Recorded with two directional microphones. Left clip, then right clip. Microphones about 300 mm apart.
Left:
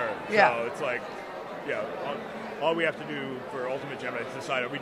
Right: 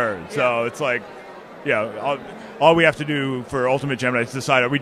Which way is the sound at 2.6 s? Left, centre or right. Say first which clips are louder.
Right 12 dB; right.